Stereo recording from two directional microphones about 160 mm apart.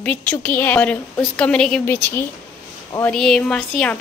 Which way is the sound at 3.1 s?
5° left (ahead or behind).